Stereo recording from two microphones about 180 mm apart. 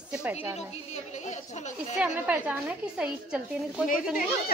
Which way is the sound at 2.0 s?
10° right (ahead or behind).